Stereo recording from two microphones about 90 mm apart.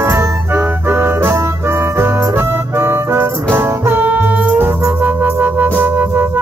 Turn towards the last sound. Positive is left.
turn(degrees=-20)  # may be behind; listen again after turning